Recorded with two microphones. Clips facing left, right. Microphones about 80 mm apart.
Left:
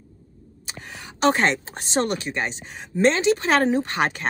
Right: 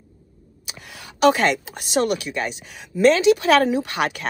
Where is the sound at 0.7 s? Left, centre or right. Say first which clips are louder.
Left 2 dB; left.